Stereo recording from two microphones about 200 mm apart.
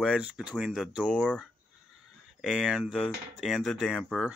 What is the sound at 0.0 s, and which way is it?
Speech, 5° right (ahead or behind).